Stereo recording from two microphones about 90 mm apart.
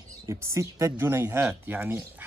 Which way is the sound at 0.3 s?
35° right (ahead or behind).